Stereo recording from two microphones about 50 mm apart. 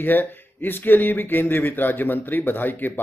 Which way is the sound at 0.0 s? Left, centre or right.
Left.